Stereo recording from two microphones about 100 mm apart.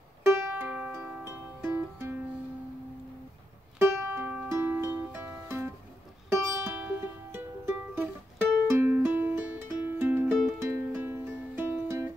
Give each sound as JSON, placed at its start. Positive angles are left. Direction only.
{"t": 0.2, "sound": "music", "side_deg": -15}
{"t": 0.9, "sound": "music", "side_deg": -25}
{"t": 3.8, "sound": "music", "side_deg": -20}